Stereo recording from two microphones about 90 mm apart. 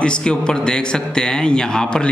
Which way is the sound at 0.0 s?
10° left (ahead or behind).